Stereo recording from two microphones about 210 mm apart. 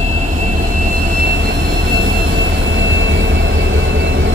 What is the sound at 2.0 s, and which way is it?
Vehicle, 65° right (ahead or behind).